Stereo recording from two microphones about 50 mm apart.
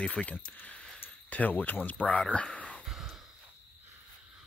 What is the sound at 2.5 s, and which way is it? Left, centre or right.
Whispering, left.